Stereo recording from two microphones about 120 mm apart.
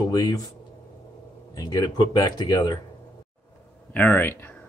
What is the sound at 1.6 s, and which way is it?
Speech, 30° left (ahead or behind).